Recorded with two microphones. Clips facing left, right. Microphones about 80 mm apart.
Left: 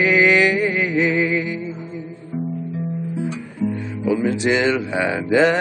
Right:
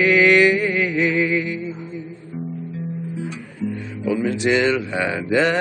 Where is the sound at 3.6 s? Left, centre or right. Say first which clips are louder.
Left 3 dB; left.